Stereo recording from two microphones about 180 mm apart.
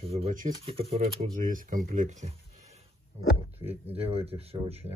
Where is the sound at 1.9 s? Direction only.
40° right (ahead or behind).